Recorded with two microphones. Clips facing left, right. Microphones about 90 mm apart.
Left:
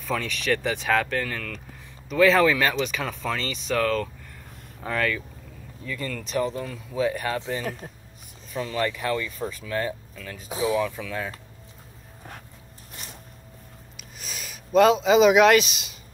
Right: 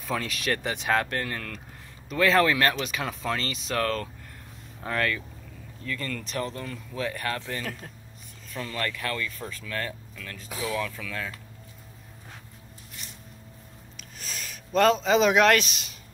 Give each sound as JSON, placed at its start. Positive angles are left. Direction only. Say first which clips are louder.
{"t": 0.0, "sound": "speech", "louder": "left 2 dB", "side_deg": -5}
{"t": 5.9, "sound": "speech", "louder": "left 1 dB", "side_deg": 10}
{"t": 13.9, "sound": "a sound", "louder": "even", "side_deg": 5}